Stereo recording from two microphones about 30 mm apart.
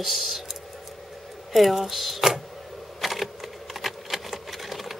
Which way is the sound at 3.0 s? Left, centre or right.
Centre.